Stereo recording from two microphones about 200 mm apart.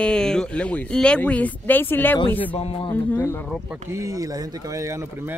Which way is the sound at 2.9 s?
10° left (ahead or behind).